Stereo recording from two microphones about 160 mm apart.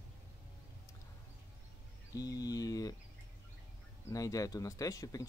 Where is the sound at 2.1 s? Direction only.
25° left (ahead or behind).